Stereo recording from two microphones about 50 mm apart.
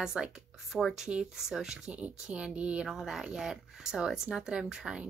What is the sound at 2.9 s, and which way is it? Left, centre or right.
A woman's voice, centre.